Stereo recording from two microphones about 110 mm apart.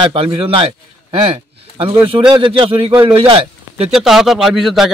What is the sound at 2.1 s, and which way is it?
A man's voice, 50° right (ahead or behind).